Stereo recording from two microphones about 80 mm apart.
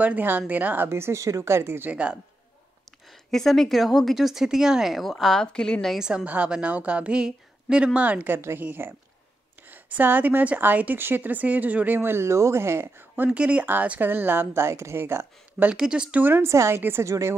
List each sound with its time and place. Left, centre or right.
0.0 s speech: right
0.8 s speech: right
1.9 s a woman's voice: centre
3.1 s a woman's voice: centre
5.9 s a woman's voice: centre
8.4 s speech: right
15.7 s a woman's voice: centre
16.2 s speech: right